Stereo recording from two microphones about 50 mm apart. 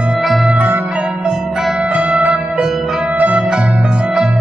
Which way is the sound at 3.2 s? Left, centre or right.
Right.